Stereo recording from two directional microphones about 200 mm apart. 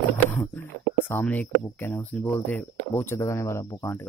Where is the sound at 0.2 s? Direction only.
10° left (ahead or behind).